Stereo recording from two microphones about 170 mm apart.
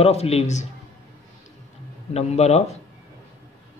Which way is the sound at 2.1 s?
40° left (ahead or behind).